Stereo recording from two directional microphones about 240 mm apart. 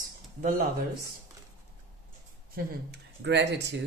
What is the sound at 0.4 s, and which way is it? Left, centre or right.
Speech, right.